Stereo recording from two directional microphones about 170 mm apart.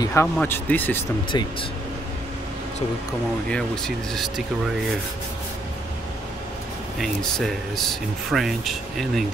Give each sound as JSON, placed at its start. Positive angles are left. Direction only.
{"t": 0.0, "sound": "speech", "side_deg": 15}
{"t": 1.3, "sound": "speech", "side_deg": 25}
{"t": 3.4, "sound": "speech", "side_deg": 5}
{"t": 7.0, "sound": "speech", "side_deg": 0}